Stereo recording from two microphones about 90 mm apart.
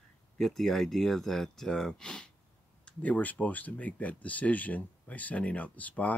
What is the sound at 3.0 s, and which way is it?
Speech, 15° left (ahead or behind).